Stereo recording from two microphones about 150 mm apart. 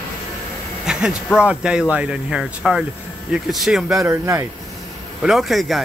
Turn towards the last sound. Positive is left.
turn(degrees=0)  # may be behind; listen again after turning